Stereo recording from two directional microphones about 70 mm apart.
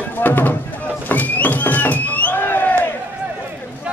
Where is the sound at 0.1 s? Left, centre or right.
Left.